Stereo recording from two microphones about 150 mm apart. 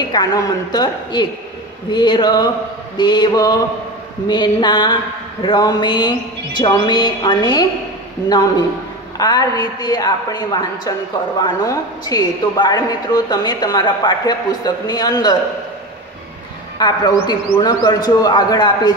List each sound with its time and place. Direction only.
0.1 s speech: 25° left (ahead or behind)
16.7 s speech: 30° left (ahead or behind)